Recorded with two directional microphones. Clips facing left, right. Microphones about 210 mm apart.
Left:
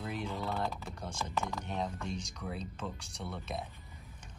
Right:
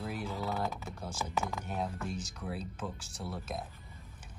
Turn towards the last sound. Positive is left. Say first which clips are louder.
# right 1 dB
turn(degrees=0)  # may be behind; listen again after turning